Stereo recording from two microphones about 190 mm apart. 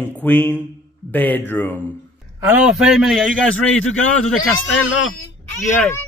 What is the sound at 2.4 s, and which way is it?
A man's voice, 10° right (ahead or behind).